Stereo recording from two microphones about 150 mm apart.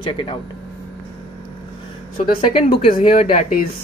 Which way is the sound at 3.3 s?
65° left (ahead or behind).